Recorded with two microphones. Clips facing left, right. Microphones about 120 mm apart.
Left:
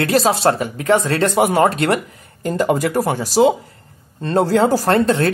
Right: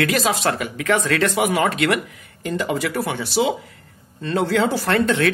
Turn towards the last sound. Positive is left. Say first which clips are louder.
# left 3 dB
turn(degrees=35)  # may be behind; listen again after turning